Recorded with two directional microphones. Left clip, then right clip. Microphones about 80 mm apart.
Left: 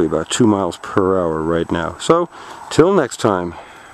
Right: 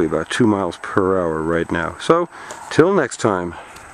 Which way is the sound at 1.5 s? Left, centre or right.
Left.